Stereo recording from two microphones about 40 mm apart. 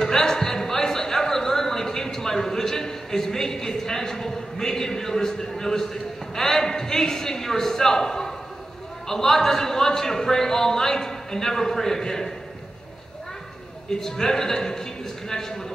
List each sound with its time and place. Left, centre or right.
0.0 s a sound: centre
6.3 s a man's voice: centre
13.9 s a man's voice: centre